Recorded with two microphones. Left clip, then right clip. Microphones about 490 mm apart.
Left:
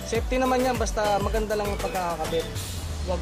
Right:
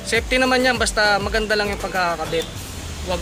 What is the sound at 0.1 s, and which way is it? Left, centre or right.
Music, left.